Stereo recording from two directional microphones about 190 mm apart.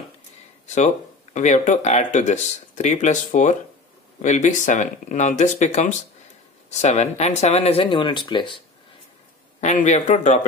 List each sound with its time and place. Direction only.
0.7 s speech: 40° left (ahead or behind)
9.6 s speech: 40° left (ahead or behind)